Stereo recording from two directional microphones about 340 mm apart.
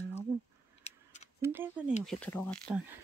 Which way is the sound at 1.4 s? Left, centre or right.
Centre.